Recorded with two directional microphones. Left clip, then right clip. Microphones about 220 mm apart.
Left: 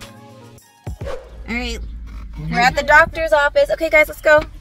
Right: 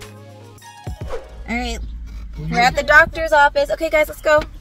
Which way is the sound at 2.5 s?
5° left (ahead or behind).